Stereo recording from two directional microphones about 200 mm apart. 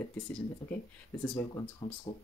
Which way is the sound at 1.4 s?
20° left (ahead or behind).